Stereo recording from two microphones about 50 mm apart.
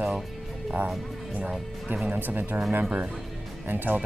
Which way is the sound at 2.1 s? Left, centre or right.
Right.